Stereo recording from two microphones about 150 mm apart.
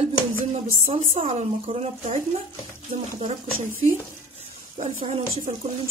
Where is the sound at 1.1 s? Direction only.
40° right (ahead or behind).